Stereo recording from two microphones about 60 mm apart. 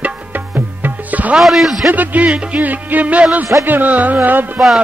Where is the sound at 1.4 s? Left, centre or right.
Centre.